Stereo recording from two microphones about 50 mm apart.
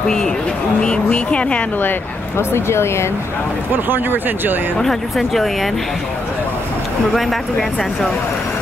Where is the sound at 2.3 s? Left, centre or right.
Left.